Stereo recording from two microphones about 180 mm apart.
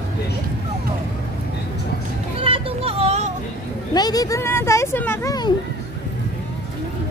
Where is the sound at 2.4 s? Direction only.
30° right (ahead or behind).